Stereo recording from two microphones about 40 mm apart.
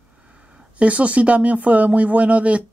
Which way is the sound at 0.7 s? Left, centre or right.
Right.